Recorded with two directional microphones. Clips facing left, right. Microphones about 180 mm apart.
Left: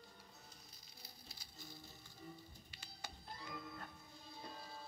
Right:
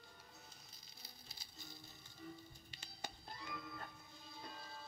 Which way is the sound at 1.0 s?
20° right (ahead or behind).